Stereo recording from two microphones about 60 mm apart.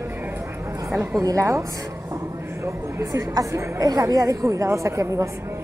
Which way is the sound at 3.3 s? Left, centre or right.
Right.